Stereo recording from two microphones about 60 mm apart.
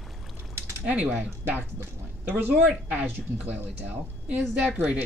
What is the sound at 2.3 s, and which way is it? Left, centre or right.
A woman's voice, right.